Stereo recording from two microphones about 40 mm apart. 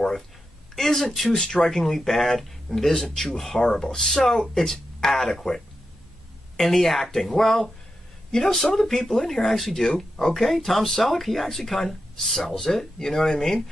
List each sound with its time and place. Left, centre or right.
0.7 s speech: centre
1.3 s speech: centre